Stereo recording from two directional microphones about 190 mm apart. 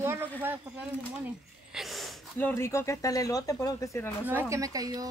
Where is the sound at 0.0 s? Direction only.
10° right (ahead or behind).